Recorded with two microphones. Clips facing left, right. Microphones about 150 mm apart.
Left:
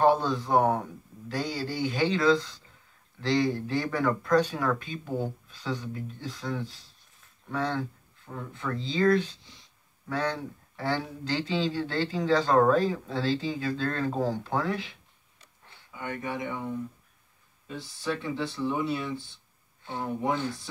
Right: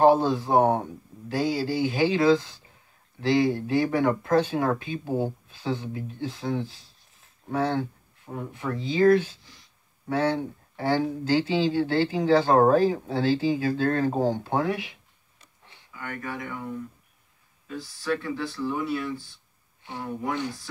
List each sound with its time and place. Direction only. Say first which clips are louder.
0.0 s speech: right 4 dB; 25° right (ahead or behind)
8.3 s speech: right 3 dB; 20° right (ahead or behind)
15.9 s speech: left 1 dB; 20° left (ahead or behind)
17.6 s speech: right 3 dB; 25° left (ahead or behind)